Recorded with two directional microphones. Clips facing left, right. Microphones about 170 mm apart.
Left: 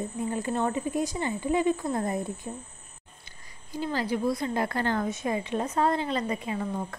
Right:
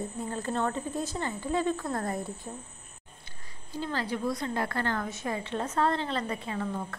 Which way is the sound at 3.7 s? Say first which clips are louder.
Left 3 dB; 15° left (ahead or behind).